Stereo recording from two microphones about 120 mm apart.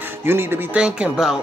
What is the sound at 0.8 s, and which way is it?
Music, 5° right (ahead or behind).